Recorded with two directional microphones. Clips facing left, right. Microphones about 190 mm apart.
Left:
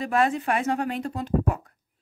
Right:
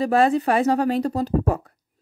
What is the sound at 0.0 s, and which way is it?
Speech, 35° right (ahead or behind).